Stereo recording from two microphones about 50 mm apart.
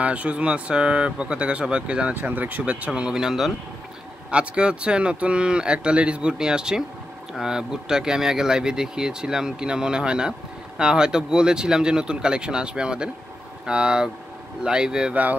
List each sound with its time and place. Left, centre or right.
0.0 s speech: right
2.1 s speech: right
2.9 s speech: centre
4.3 s speech: right